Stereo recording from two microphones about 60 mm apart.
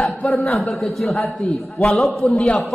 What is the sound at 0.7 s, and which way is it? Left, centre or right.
A man's voice, centre.